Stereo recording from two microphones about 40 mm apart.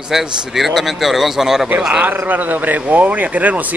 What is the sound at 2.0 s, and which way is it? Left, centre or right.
Speech, right.